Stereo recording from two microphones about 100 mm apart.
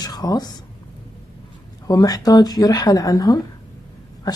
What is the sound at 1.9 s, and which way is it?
Speech, 40° left (ahead or behind).